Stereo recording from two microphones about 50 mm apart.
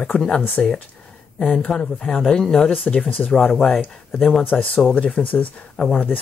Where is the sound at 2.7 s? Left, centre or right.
Left.